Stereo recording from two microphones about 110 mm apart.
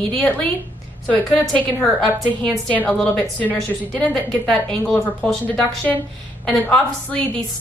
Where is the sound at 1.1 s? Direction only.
15° left (ahead or behind).